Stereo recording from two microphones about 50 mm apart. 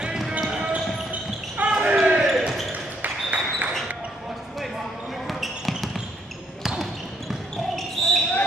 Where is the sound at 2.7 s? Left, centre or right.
Right.